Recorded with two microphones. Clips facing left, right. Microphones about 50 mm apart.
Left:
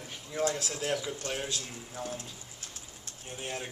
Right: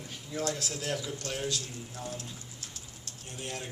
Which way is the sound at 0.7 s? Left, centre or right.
Left.